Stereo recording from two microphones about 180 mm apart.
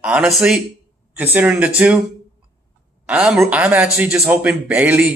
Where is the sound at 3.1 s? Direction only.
5° right (ahead or behind).